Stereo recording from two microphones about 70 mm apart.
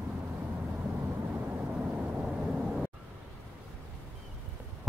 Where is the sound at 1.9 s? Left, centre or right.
Centre.